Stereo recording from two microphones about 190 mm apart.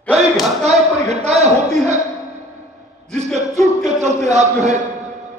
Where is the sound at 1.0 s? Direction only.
35° right (ahead or behind).